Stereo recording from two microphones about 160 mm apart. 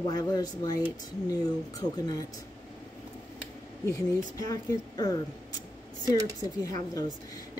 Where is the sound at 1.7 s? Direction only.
20° left (ahead or behind).